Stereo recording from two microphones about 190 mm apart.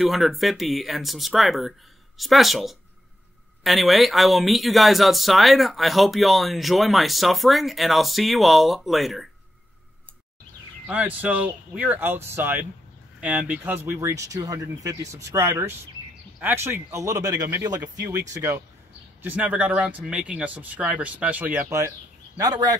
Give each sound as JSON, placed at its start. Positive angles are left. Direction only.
{"t": 0.0, "sound": "speech", "side_deg": 0}
{"t": 10.9, "sound": "speech", "side_deg": -10}